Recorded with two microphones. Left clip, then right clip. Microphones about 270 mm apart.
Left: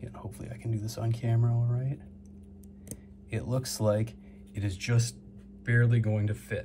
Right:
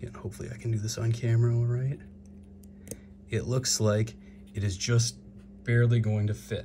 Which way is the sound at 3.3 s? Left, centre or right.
Right.